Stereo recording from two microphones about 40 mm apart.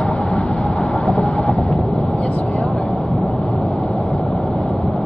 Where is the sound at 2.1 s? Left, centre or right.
Left.